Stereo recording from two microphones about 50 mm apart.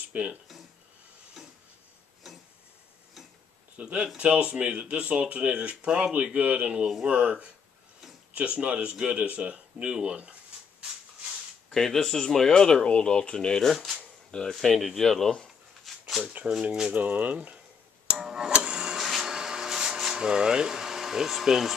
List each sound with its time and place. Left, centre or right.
0.1 s speech: right
3.8 s speech: right
11.7 s speech: centre
13.7 s speech: centre
14.3 s speech: centre
14.6 s speech: centre
15.4 s a sound: centre
16.5 s speech: centre
16.9 s speech: right
18.1 s tick-tock: centre
18.9 s a sound: centre